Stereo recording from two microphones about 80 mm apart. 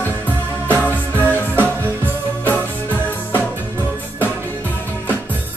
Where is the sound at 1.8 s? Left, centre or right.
Right.